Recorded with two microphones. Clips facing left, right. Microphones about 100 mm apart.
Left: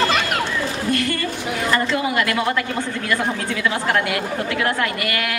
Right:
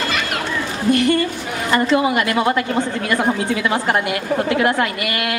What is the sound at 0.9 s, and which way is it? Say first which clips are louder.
A woman's voice: right 6 dB; 20° right (ahead or behind).